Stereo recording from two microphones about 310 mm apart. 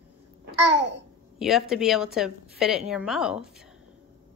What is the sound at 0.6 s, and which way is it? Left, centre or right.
Babbling, right.